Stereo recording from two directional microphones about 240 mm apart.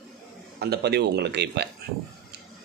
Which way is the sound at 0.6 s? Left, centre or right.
Right.